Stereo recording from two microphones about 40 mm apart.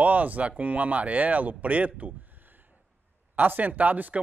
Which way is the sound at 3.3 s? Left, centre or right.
Right.